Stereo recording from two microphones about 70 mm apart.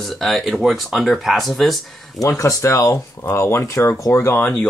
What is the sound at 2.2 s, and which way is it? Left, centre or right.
Speech, left.